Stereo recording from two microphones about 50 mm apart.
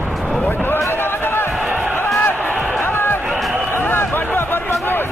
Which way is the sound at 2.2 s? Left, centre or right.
Left.